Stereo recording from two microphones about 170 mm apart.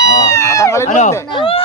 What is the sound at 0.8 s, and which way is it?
Speech, 45° left (ahead or behind).